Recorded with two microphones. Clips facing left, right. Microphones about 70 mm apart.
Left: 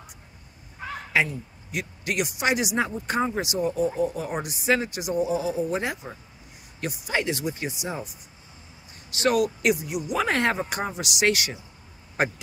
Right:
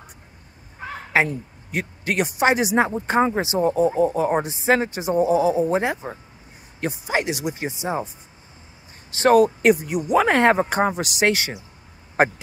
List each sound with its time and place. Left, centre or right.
1.1 s speech: right